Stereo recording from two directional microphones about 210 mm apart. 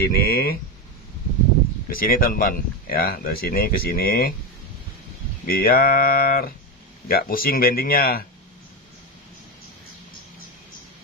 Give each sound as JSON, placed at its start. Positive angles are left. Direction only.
{"t": 0.0, "sound": "speech", "side_deg": 45}
{"t": 1.9, "sound": "speech", "side_deg": 45}
{"t": 5.5, "sound": "speech", "side_deg": 45}